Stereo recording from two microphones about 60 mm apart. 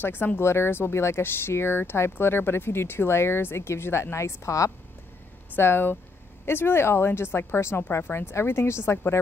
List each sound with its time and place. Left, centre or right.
0.0 s speech: left
0.4 s speech: left
5.6 s speech: left